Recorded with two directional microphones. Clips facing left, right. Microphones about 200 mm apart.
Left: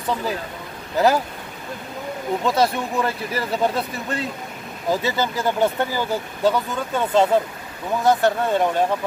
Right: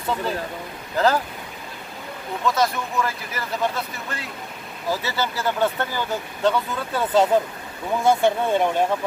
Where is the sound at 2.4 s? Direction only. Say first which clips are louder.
Left 1 dB; 30° left (ahead or behind).